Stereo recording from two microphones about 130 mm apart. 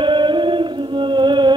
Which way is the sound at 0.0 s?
40° right (ahead or behind).